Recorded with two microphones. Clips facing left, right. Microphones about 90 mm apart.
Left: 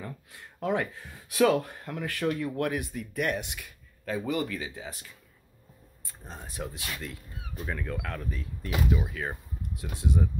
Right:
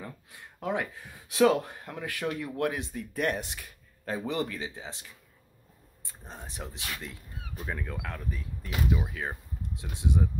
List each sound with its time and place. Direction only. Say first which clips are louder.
0.0 s a sound: left 2 dB; 15° right (ahead or behind)
1.3 s speech: even; 20° right (ahead or behind)
6.2 s speech: left 3 dB; 25° right (ahead or behind)
7.5 s speech: left 2 dB; 5° right (ahead or behind)